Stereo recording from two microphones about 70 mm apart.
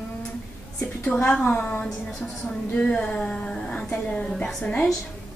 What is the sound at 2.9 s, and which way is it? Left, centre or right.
A woman's voice, centre.